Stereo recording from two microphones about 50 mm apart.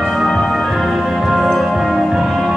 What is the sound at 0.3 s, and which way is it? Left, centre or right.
Music, centre.